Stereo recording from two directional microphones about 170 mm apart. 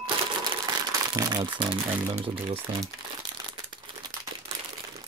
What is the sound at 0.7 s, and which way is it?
Crumpling, 20° right (ahead or behind).